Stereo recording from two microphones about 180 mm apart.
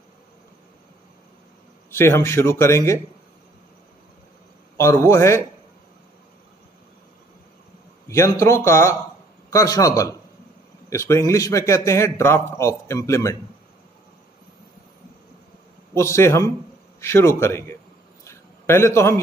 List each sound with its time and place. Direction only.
1.9 s a man's voice: 15° left (ahead or behind)
4.7 s a man's voice: 15° left (ahead or behind)
8.1 s a man's voice: 15° left (ahead or behind)
15.9 s a man's voice: 15° left (ahead or behind)
18.2 s a sound: 15° left (ahead or behind)